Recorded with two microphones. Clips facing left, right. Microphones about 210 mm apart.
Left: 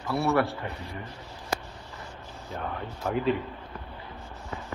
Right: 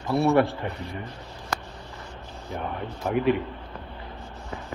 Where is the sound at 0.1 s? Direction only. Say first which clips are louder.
Right 5 dB; 20° right (ahead or behind).